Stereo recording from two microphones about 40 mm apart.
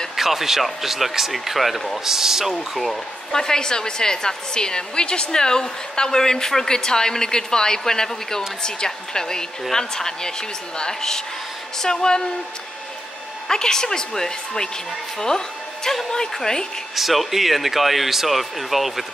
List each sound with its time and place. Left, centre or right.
0.1 s speech: centre
2.0 s speech: centre
2.7 s speech: centre
3.3 s a woman's voice: centre
13.5 s a woman's voice: centre
16.9 s speech: centre